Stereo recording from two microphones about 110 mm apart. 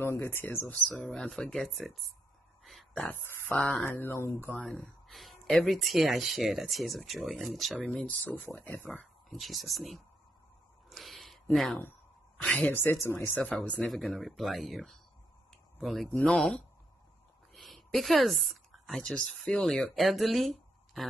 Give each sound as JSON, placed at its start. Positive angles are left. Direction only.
{"t": 0.0, "sound": "speech", "side_deg": 25}
{"t": 2.6, "sound": "a sound", "side_deg": 0}
{"t": 3.1, "sound": "speech", "side_deg": 15}
{"t": 4.6, "sound": "speech", "side_deg": 5}
{"t": 8.9, "sound": "speech", "side_deg": 0}
{"t": 10.9, "sound": "a sound", "side_deg": 0}
{"t": 11.5, "sound": "speech", "side_deg": 0}
{"t": 13.4, "sound": "speech", "side_deg": 5}
{"t": 16.1, "sound": "speech", "side_deg": 15}
{"t": 16.3, "sound": "speech", "side_deg": 5}
{"t": 17.6, "sound": "a sound", "side_deg": 0}
{"t": 18.9, "sound": "speech", "side_deg": 5}